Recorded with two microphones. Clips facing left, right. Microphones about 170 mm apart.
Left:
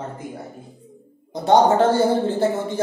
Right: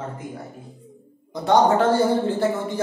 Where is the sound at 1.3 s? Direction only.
30° left (ahead or behind).